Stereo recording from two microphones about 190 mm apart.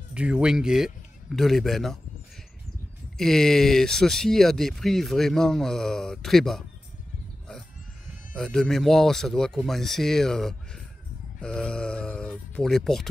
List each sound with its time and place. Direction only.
0.1 s speech: 5° right (ahead or behind)
3.2 s speech: centre (ahead or behind)
8.4 s speech: 5° left (ahead or behind)